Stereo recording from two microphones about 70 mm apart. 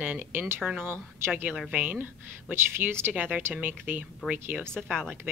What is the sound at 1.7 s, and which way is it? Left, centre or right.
Speech, right.